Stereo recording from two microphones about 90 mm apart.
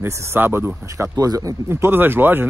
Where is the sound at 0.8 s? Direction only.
35° right (ahead or behind).